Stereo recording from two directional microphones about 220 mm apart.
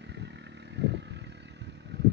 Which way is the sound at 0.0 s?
50° right (ahead or behind).